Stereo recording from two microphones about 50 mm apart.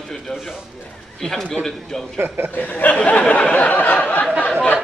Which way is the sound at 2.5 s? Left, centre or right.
Left.